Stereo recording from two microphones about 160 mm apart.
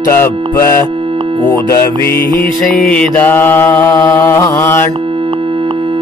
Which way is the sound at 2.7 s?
5° left (ahead or behind).